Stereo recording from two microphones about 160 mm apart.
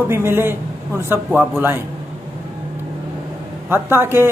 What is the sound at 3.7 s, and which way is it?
Speech, 15° right (ahead or behind).